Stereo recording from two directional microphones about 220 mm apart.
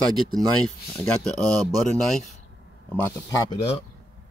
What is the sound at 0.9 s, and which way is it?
Speech, 5° left (ahead or behind).